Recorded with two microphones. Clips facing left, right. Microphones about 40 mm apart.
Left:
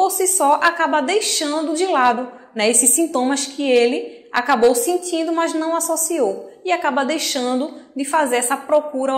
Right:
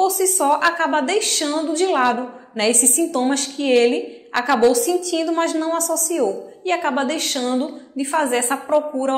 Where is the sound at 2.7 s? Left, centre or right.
Left.